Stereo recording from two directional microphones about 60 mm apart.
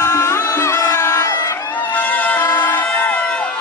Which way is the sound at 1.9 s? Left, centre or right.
Left.